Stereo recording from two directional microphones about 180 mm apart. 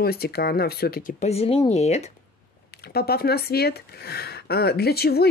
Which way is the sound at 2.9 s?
60° left (ahead or behind).